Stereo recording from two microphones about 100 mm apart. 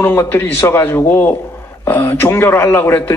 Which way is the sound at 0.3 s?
20° left (ahead or behind).